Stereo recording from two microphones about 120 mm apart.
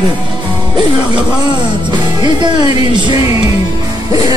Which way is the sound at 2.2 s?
40° right (ahead or behind).